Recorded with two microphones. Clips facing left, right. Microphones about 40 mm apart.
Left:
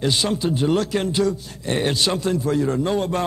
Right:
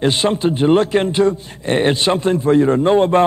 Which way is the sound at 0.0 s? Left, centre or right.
Right.